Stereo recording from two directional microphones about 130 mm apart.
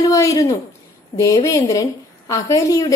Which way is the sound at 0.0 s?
25° left (ahead or behind).